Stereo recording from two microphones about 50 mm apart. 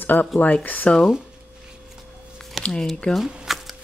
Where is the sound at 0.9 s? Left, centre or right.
Left.